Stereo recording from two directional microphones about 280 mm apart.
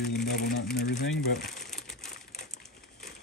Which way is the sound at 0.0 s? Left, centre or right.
Left.